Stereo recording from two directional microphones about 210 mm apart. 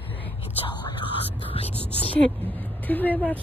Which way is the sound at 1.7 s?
25° right (ahead or behind).